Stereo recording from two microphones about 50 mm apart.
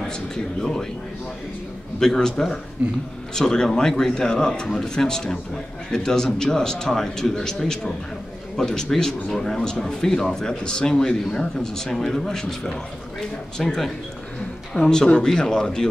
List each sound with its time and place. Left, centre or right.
0.6 s speech: centre
2.0 s speech: centre
14.8 s speech: centre